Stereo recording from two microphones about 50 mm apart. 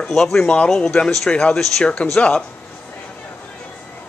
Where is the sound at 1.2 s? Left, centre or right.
Left.